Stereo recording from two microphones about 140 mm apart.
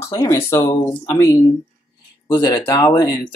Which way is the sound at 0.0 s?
20° left (ahead or behind).